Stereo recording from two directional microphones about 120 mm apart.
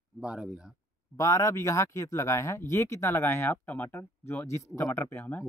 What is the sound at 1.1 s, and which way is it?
Speech, 25° left (ahead or behind).